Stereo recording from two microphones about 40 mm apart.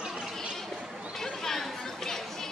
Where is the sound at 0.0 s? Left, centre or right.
Centre.